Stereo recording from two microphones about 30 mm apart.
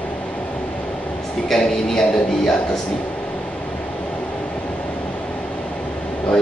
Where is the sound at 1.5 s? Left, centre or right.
Centre.